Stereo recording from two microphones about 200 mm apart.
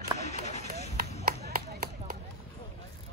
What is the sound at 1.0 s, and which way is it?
Chop, 50° right (ahead or behind).